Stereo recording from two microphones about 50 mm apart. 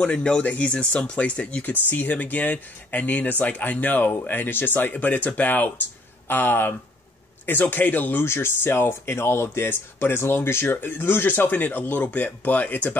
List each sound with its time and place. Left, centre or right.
0.0 s speech: left
1.6 s speech: left
8.3 s speech: left